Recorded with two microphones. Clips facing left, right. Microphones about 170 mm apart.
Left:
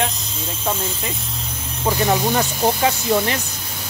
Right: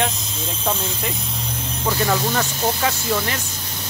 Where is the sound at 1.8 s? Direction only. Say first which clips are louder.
Left 3 dB; 20° left (ahead or behind).